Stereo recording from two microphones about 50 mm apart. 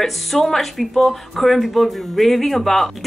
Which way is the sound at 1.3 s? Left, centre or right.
Centre.